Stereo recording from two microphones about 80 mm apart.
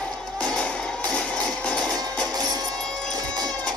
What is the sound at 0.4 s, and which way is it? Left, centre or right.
Music, centre.